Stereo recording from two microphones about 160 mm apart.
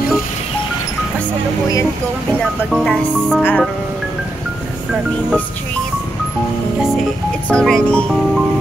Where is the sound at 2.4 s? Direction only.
5° left (ahead or behind).